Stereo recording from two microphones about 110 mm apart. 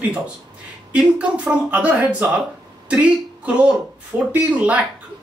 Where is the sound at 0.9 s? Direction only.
10° right (ahead or behind).